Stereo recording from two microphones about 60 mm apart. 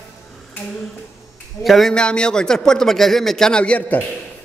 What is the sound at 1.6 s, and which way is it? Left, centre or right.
Speech, centre.